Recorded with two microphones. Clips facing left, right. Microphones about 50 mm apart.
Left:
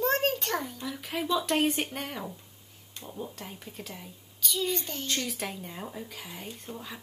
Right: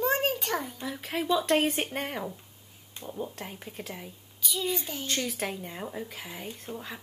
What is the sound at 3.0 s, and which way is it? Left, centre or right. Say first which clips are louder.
A child's voice: right 3 dB; centre.